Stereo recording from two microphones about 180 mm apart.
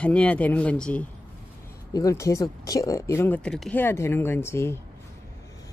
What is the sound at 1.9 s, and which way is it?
Speech, 20° left (ahead or behind).